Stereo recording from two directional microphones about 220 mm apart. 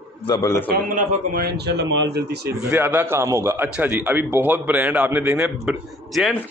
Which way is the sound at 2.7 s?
10° right (ahead or behind).